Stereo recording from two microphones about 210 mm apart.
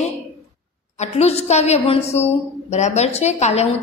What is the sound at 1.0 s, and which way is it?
A woman's voice, 30° left (ahead or behind).